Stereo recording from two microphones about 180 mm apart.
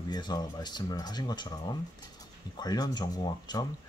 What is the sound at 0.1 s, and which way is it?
Speech, 20° left (ahead or behind).